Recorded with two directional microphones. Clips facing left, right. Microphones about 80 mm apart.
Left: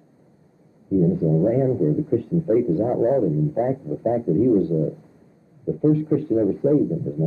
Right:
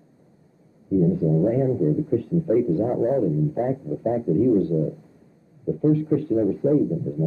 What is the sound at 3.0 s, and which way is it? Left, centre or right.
Speech, left.